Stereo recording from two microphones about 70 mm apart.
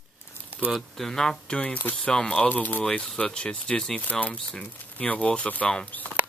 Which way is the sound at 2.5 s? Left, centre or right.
Left.